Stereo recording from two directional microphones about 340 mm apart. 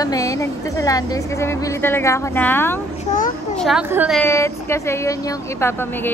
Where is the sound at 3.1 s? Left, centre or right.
Left.